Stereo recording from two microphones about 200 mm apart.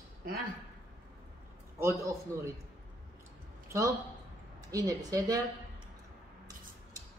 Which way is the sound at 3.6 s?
15° right (ahead or behind).